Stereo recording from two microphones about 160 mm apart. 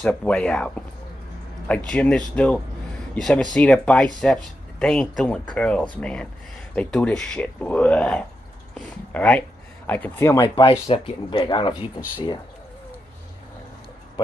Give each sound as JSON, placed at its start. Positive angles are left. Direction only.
{"t": 0.0, "sound": "speech", "side_deg": 5}
{"t": 1.9, "sound": "speech", "side_deg": 5}
{"t": 10.4, "sound": "speech", "side_deg": 35}